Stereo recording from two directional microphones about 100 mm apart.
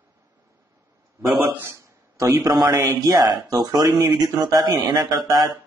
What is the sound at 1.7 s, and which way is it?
A man's voice, 35° right (ahead or behind).